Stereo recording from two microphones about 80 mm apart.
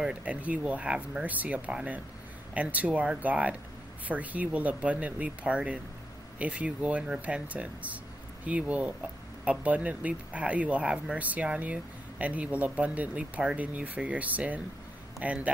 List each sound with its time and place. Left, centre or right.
0.0 s speech: centre